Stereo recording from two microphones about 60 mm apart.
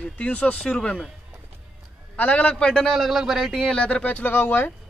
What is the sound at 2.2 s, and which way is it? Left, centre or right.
Speech, left.